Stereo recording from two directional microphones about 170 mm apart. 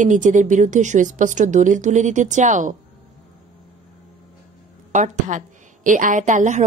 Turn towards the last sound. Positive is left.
turn(degrees=-45)  # may be behind; listen again after turning